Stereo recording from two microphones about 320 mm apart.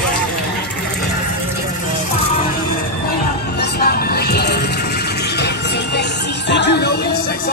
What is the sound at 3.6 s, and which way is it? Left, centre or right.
Music, left.